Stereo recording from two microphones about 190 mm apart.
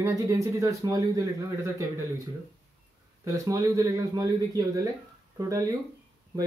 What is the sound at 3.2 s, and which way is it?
Speech, 15° right (ahead or behind).